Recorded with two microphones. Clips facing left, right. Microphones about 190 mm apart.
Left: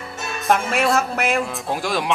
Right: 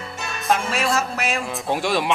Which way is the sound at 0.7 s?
60° left (ahead or behind).